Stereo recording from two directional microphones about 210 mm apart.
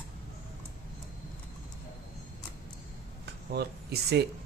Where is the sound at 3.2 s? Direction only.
50° right (ahead or behind).